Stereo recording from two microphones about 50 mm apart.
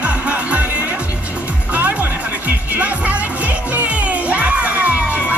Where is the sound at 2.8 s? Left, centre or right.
Right.